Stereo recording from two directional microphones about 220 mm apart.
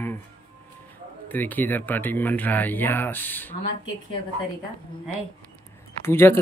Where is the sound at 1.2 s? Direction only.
10° left (ahead or behind).